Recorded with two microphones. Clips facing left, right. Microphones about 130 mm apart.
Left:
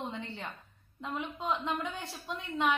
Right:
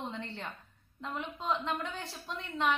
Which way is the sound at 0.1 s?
5° left (ahead or behind).